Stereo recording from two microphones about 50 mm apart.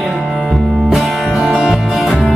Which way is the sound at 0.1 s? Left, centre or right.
Centre.